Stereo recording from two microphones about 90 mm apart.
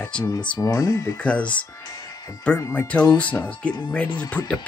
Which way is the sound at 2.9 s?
15° left (ahead or behind).